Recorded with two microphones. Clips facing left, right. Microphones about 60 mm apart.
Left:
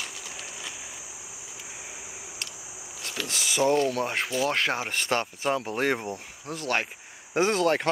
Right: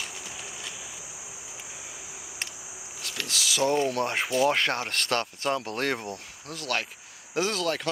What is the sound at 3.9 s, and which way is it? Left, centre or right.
Speech, centre.